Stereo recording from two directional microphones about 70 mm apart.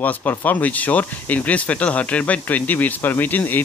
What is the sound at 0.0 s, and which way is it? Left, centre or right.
Speech, left.